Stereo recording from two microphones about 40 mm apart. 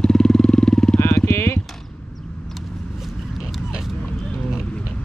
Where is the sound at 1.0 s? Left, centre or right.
Left.